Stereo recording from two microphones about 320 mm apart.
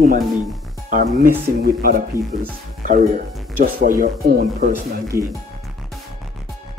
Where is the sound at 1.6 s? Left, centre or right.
Right.